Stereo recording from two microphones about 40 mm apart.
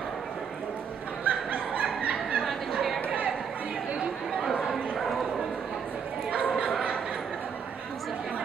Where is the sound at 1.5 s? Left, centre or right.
Right.